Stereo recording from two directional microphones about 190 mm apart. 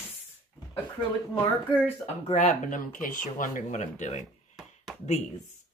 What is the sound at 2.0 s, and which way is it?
Speech, 35° left (ahead or behind).